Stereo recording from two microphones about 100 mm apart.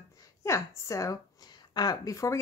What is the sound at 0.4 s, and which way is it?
Speech, 30° left (ahead or behind).